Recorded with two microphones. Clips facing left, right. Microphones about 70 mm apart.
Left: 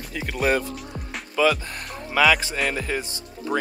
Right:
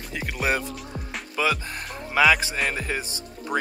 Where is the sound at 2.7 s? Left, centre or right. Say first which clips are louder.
Left 2 dB; centre.